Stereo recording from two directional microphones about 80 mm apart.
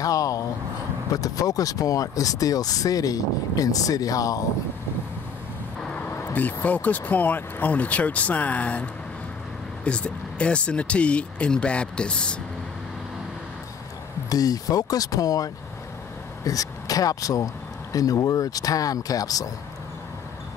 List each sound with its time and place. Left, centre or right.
0.0 s a sound: left
1.1 s speech: left
6.3 s speech: left
9.8 s speech: centre
14.3 s speech: left